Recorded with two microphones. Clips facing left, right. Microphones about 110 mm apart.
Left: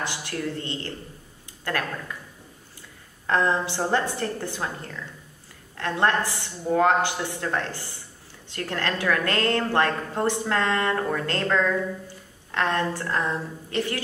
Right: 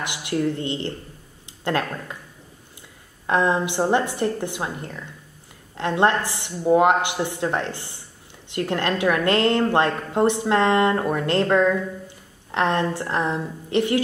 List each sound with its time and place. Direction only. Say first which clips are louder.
0.0 s a woman's voice: right 6 dB; 20° right (ahead or behind)
3.3 s a woman's voice: right 3 dB; 15° right (ahead or behind)